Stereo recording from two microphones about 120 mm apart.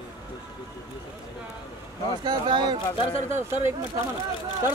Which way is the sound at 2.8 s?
45° left (ahead or behind).